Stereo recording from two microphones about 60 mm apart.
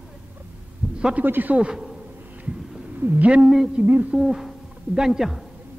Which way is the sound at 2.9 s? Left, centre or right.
Right.